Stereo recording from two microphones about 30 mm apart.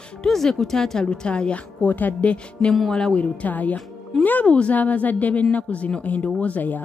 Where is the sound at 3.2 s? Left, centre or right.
Left.